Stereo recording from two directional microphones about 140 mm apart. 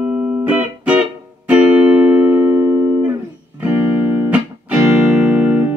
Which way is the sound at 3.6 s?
15° right (ahead or behind).